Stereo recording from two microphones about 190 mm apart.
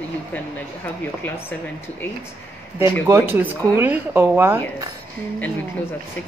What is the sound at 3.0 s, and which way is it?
Speech, 15° right (ahead or behind).